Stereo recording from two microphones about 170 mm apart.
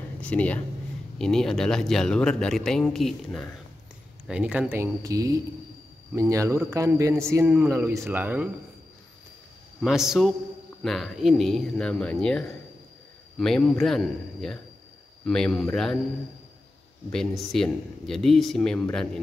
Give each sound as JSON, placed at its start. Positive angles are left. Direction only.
{"t": 0.2, "sound": "speech", "side_deg": 5}
{"t": 4.3, "sound": "a man's voice", "side_deg": -5}
{"t": 9.8, "sound": "speech", "side_deg": 0}
{"t": 17.1, "sound": "speech", "side_deg": 0}